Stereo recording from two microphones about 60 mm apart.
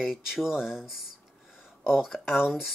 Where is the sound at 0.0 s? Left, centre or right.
Centre.